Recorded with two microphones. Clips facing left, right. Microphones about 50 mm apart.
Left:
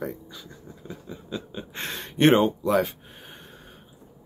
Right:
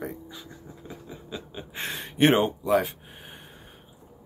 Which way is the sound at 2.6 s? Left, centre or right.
Centre.